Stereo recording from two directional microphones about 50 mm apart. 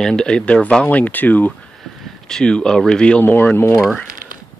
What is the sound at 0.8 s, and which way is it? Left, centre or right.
Speech, left.